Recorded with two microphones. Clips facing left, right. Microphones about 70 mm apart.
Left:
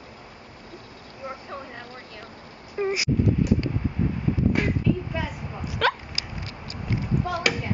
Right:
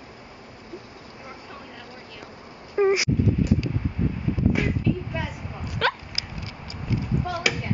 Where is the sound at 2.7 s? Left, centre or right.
Right.